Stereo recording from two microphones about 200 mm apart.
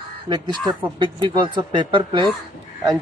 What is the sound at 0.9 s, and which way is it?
Speech, 25° right (ahead or behind).